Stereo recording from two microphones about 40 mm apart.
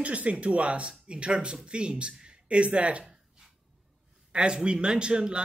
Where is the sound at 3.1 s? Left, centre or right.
Centre.